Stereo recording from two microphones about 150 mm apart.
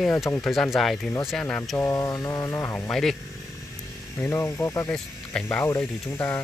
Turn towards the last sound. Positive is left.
turn(degrees=15)  # may be behind; listen again after turning